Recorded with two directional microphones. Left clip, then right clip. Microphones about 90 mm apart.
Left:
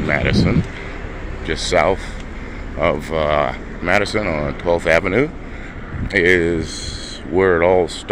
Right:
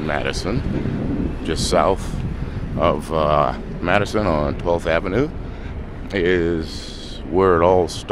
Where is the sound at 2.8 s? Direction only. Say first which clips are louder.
Even; 35° right (ahead or behind).